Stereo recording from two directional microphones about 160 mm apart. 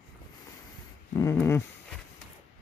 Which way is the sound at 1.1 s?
20° left (ahead or behind).